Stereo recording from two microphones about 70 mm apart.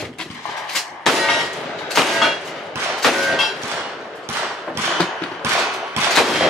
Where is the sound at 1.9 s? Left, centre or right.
Centre.